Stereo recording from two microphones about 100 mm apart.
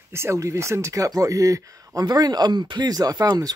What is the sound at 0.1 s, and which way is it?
Speech, 25° right (ahead or behind).